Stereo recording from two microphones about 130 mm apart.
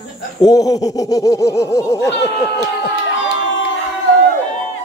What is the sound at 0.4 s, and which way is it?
Speech, 25° left (ahead or behind).